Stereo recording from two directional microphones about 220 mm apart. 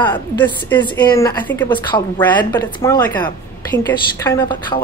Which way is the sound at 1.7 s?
20° left (ahead or behind).